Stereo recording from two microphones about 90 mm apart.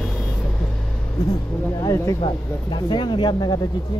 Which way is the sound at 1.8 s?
35° left (ahead or behind).